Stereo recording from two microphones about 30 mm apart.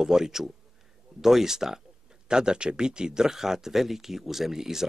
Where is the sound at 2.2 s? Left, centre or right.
Right.